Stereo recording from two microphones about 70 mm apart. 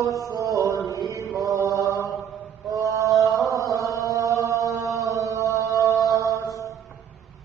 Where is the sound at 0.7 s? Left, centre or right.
Left.